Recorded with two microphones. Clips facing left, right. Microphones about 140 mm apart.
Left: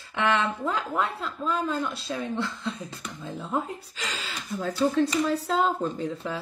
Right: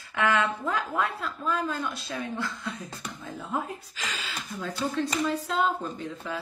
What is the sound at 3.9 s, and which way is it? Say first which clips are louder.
Speech: even; 35° left (ahead or behind).